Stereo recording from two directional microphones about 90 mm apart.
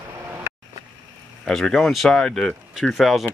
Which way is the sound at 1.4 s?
5° left (ahead or behind).